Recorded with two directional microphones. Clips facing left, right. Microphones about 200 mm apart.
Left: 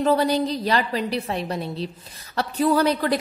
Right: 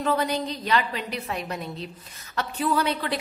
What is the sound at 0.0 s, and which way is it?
A woman's voice, 35° left (ahead or behind).